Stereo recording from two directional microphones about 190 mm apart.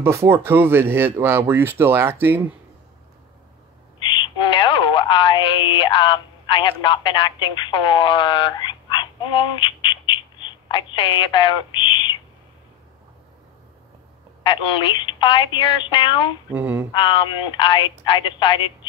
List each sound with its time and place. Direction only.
0.0 s speech: 15° right (ahead or behind)
4.0 s a sound: 25° left (ahead or behind)
5.8 s speech: 25° left (ahead or behind)
14.4 s a woman's voice: 25° left (ahead or behind)
16.4 s speech: 10° right (ahead or behind)
16.9 s a woman's voice: 25° left (ahead or behind)